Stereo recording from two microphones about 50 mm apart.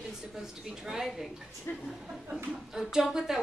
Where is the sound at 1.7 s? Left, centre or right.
Left.